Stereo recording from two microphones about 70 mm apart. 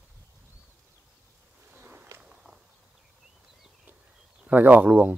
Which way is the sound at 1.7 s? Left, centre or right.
Right.